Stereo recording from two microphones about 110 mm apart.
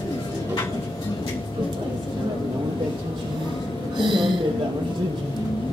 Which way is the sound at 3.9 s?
45° right (ahead or behind).